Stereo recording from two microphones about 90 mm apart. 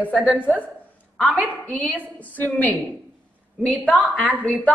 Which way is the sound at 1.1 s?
10° left (ahead or behind).